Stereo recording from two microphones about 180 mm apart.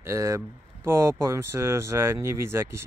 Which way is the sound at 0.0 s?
15° right (ahead or behind).